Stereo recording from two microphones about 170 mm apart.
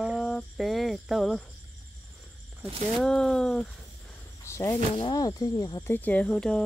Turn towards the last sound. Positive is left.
turn(degrees=5)  # may be behind; listen again after turning